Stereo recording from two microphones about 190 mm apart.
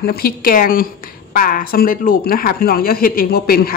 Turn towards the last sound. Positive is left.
turn(degrees=50)  # may be behind; listen again after turning